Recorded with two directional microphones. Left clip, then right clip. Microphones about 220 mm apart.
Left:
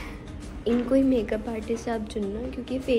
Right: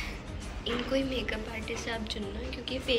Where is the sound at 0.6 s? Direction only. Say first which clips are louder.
Left 8 dB; 15° left (ahead or behind).